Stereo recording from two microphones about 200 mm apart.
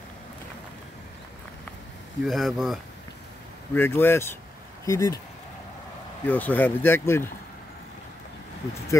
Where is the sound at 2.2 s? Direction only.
Centre (ahead or behind).